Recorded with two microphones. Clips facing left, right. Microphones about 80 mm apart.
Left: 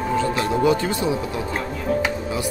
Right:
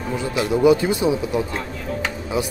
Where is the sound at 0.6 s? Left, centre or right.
Centre.